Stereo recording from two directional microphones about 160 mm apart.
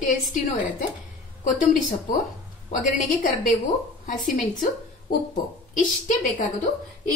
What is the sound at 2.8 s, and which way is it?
A woman's voice, 55° left (ahead or behind).